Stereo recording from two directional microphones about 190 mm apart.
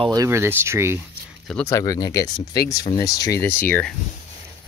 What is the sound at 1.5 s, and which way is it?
Speech, 15° left (ahead or behind).